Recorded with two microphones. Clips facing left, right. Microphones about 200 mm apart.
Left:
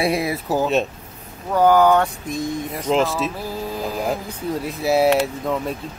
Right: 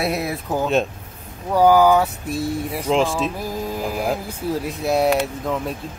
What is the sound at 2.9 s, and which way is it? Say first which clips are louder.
Speech: even; centre (ahead or behind).